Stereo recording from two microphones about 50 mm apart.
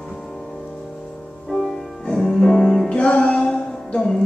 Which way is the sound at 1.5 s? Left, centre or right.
Centre.